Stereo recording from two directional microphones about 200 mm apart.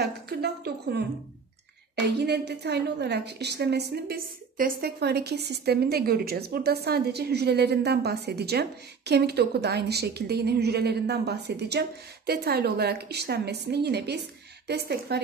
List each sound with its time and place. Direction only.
0.0 s a woman's voice: 55° right (ahead or behind)
2.1 s a woman's voice: 55° right (ahead or behind)